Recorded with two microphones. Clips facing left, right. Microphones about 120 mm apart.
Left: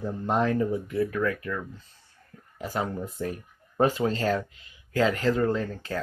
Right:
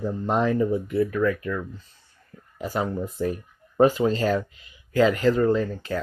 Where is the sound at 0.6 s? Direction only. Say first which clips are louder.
Right 3 dB; 15° right (ahead or behind).